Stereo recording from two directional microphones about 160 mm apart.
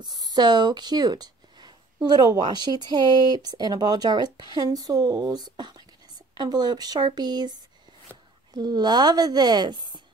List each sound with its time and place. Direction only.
0.0 s speech: 25° right (ahead or behind)
8.5 s a woman's voice: 25° right (ahead or behind)